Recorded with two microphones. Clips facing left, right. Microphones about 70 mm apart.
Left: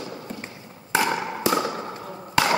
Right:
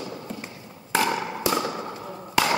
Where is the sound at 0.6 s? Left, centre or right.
Centre.